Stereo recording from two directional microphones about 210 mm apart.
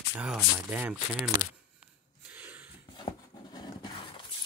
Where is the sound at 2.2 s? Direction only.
5° right (ahead or behind).